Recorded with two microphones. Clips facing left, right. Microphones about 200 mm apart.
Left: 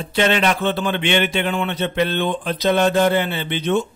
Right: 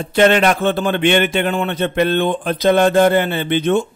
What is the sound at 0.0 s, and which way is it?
A man's voice, 50° right (ahead or behind).